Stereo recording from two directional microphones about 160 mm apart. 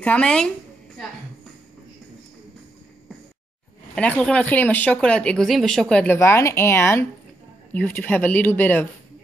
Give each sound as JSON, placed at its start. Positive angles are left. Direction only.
{"t": 0.0, "sound": "speech", "side_deg": 5}
{"t": 3.9, "sound": "speech", "side_deg": 5}
{"t": 6.1, "sound": "speech", "side_deg": 15}